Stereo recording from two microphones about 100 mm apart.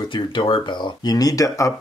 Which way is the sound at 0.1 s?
55° left (ahead or behind).